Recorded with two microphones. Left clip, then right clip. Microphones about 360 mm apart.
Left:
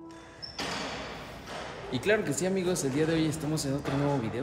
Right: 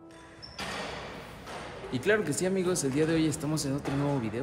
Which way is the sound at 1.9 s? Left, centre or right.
Centre.